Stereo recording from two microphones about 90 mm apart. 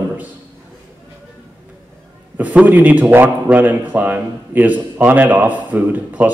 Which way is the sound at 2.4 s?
20° right (ahead or behind).